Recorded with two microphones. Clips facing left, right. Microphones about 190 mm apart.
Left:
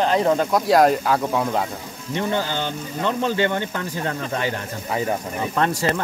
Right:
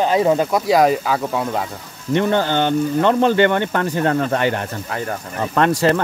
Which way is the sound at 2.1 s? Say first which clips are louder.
Right 7 dB; 65° right (ahead or behind).